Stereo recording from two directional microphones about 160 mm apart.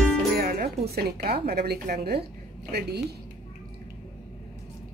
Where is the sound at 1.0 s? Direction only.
75° right (ahead or behind).